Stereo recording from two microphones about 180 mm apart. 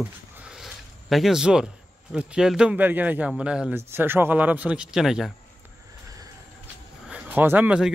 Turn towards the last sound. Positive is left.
turn(degrees=-5)  # may be behind; listen again after turning